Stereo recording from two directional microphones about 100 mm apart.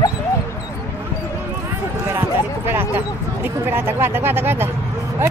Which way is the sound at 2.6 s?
20° right (ahead or behind).